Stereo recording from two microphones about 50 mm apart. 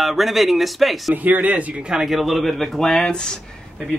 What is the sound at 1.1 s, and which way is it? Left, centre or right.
Speech, right.